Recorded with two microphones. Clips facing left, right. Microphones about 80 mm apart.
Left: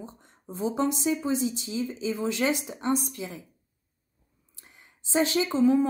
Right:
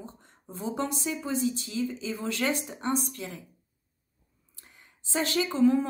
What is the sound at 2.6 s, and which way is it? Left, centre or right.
Speech, centre.